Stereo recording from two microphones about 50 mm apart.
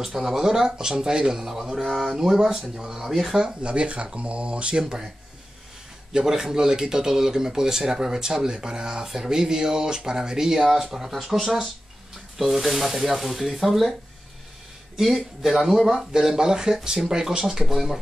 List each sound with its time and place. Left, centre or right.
0.0 s speech: centre
3.6 s speech: right
6.1 s speech: centre
15.0 s speech: centre